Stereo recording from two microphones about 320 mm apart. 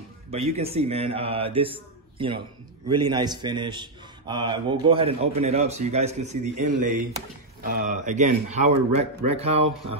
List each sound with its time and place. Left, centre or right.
0.3 s a man's voice: centre
7.6 s speech: right